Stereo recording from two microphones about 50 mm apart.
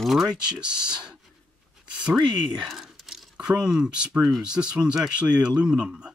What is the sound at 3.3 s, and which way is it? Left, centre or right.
A man's voice, centre.